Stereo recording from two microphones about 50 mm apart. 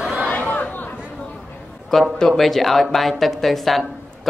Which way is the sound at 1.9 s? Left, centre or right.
Centre.